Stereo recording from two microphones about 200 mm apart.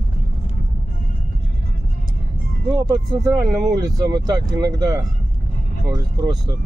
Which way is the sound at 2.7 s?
20° right (ahead or behind).